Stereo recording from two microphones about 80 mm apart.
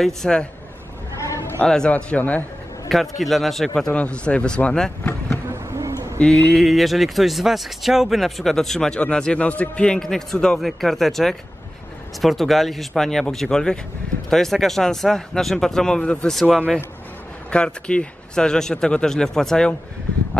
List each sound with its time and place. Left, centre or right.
0.0 s speech: centre
1.6 s speech: centre
2.9 s speech: centre
5.5 s bee: right
6.1 s speech: centre